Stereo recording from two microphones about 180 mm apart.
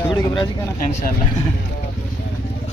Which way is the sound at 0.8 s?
45° left (ahead or behind).